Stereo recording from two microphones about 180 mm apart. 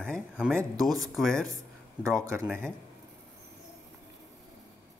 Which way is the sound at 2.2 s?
15° right (ahead or behind).